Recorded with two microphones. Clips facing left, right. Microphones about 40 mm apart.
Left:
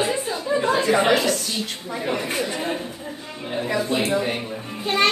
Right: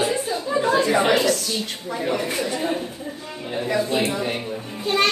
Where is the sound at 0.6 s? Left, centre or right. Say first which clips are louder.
Right 3 dB; left.